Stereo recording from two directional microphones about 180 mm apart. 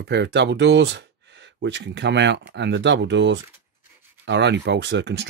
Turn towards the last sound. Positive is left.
turn(degrees=-80)